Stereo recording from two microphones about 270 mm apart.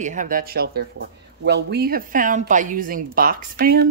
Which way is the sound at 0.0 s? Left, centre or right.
Right.